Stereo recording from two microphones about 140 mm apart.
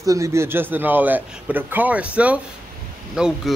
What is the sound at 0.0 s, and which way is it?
Speech, 20° right (ahead or behind).